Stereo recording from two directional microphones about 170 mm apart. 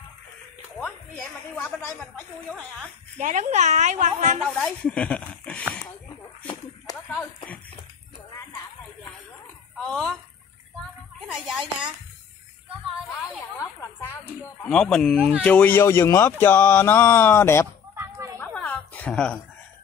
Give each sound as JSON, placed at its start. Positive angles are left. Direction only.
{"t": 1.5, "sound": "speech", "side_deg": 10}
{"t": 3.2, "sound": "a woman's voice", "side_deg": -45}
{"t": 4.4, "sound": "speech", "side_deg": 0}
{"t": 6.9, "sound": "a sound", "side_deg": 20}
{"t": 9.8, "sound": "speech", "side_deg": 5}
{"t": 11.1, "sound": "a woman's voice", "side_deg": -5}
{"t": 14.4, "sound": "speech", "side_deg": 5}
{"t": 17.9, "sound": "a sound", "side_deg": -20}
{"t": 18.4, "sound": "a sound", "side_deg": 10}